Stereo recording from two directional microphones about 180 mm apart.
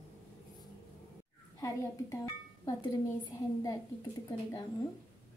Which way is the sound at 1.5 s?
15° left (ahead or behind).